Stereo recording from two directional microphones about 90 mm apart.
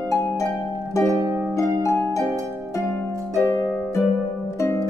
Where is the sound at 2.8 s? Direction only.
25° left (ahead or behind).